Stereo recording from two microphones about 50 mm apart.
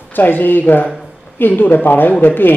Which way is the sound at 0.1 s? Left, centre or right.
Left.